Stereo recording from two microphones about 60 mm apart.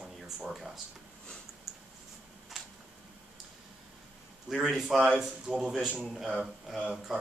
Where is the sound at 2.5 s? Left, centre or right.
Centre.